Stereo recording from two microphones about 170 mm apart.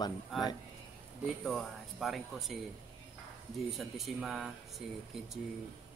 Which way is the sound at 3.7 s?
Centre (ahead or behind).